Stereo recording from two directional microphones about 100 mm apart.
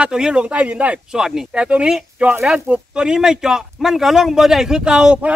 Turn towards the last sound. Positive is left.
turn(degrees=-10)  # may be behind; listen again after turning